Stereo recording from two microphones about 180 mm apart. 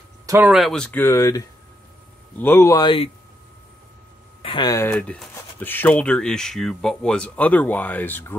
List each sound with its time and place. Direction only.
0.5 s speech: centre (ahead or behind); by 3.1 s 25° left (ahead or behind)
4.4 s speech: 25° left (ahead or behind)
4.8 s speech: 5° left (ahead or behind)